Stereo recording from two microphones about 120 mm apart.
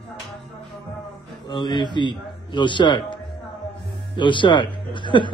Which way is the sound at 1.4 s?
40° left (ahead or behind).